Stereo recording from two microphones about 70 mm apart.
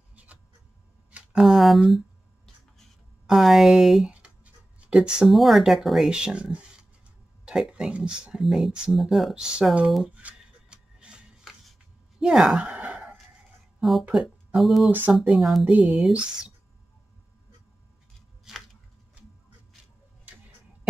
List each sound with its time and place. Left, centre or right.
0.1 s a sound: right
1.3 s speech: centre
1.9 s a sound: centre
3.3 s speech: centre
9.3 s speech: centre
9.8 s speech: centre
10.1 s a sound: centre
12.2 s speech: centre
12.6 s sigh: centre
13.7 s speech: centre
14.9 s speech: right
15.1 s speech: centre
16.1 s speech: centre
18.5 s chopping: centre